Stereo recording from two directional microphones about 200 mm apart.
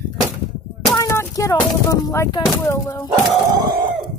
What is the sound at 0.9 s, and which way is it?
Speech, 15° left (ahead or behind).